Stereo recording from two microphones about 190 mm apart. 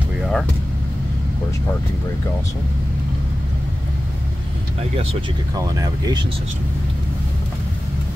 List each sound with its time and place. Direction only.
0.2 s vehicle: centre (ahead or behind)
5.5 s speech: 20° right (ahead or behind)